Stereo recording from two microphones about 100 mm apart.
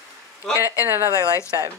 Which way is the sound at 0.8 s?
25° right (ahead or behind).